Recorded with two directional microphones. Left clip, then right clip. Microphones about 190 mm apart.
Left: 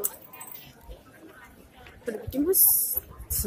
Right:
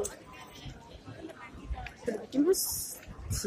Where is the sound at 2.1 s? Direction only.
15° left (ahead or behind).